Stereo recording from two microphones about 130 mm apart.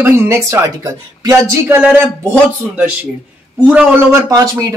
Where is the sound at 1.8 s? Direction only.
10° right (ahead or behind).